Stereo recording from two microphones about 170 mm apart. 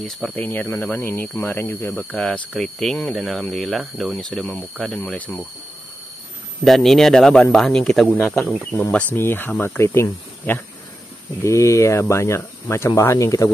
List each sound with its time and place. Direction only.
0.0 s speech: 5° left (ahead or behind)
6.6 s speech: centre (ahead or behind); by 13.5 s 20° left (ahead or behind)